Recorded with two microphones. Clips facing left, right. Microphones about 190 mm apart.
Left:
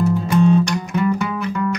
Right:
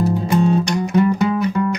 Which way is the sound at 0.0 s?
35° right (ahead or behind).